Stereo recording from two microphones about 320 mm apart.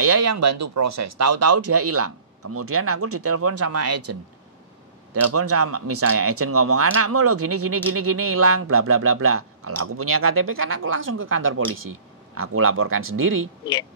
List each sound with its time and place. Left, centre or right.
0.0 s speech: right